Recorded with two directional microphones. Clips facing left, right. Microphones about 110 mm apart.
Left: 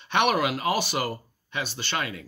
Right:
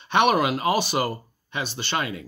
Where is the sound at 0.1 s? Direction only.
25° right (ahead or behind).